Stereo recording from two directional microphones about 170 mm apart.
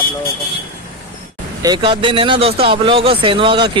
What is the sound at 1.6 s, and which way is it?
Speech, 30° right (ahead or behind).